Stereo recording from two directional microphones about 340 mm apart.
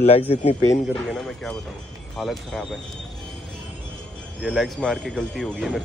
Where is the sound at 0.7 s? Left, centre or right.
Centre.